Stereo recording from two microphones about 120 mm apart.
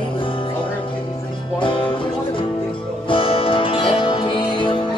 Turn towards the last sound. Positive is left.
turn(degrees=45)  # may be behind; listen again after turning